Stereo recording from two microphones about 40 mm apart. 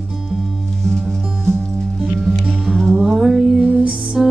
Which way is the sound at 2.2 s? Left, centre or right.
Centre.